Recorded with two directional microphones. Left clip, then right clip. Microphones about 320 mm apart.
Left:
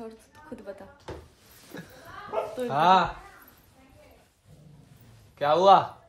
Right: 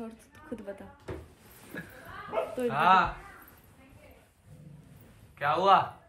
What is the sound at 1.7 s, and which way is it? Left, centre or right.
Speech, centre.